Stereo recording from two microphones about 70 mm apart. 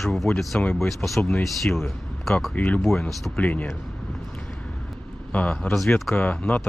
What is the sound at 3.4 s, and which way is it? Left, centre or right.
Speech, left.